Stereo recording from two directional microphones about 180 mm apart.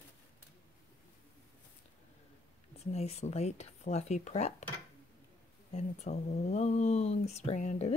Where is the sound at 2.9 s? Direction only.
35° left (ahead or behind).